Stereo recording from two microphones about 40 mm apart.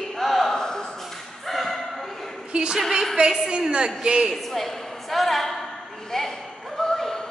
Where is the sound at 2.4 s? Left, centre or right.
Right.